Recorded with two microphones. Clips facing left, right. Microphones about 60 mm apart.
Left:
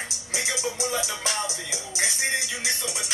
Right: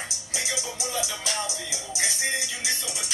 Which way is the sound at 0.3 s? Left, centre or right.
Left.